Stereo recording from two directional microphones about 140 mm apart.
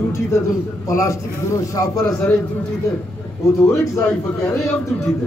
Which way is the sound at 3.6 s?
20° left (ahead or behind).